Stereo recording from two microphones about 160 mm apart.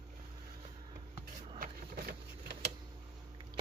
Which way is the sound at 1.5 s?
70° right (ahead or behind).